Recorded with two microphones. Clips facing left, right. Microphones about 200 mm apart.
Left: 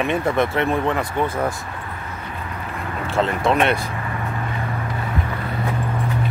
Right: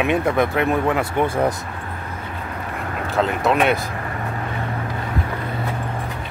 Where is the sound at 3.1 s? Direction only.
Centre (ahead or behind).